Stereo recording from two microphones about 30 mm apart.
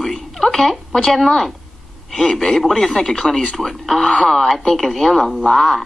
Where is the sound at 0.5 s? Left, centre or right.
Centre.